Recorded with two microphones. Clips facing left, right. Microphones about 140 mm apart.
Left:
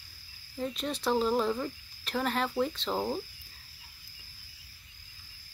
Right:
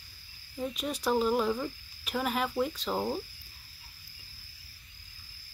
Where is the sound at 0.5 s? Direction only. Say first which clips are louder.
Even; 5° right (ahead or behind).